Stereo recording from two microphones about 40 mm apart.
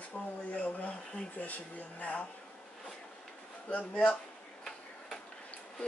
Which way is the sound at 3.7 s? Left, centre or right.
Left.